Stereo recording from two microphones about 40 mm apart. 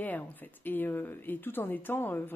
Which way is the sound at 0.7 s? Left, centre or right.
Left.